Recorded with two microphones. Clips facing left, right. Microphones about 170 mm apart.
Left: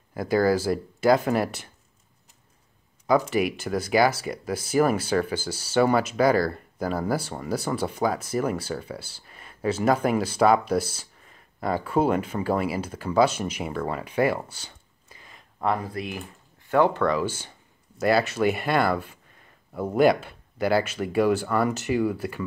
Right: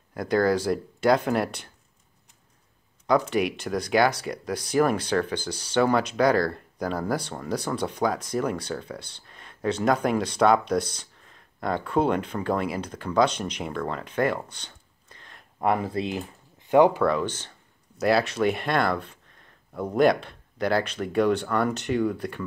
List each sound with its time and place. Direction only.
0.1 s speech: 5° left (ahead or behind)
3.1 s speech: 5° left (ahead or behind)
15.6 s speech: 20° right (ahead or behind)
17.0 s speech: 5° left (ahead or behind)